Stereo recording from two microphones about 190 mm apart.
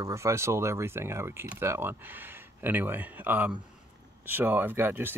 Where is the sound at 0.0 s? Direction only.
15° right (ahead or behind).